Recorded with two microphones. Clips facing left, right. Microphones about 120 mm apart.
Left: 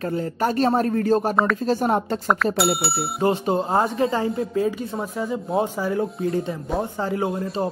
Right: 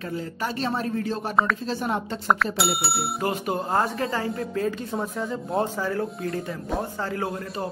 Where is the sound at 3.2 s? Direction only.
25° left (ahead or behind).